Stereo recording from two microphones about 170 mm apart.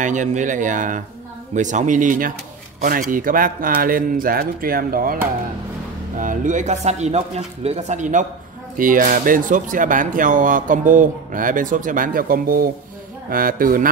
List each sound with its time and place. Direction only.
0.0 s speech: 45° right (ahead or behind)
6.1 s speech: 50° right (ahead or behind)